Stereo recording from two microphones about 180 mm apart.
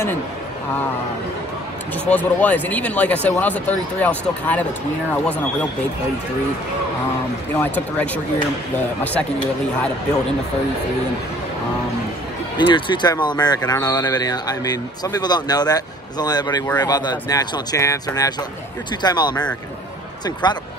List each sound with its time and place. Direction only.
2.0 s speech: 10° left (ahead or behind)
7.5 s speech: 10° left (ahead or behind)
12.5 s a man's voice: 25° left (ahead or behind)
20.4 s a man's voice: 25° left (ahead or behind)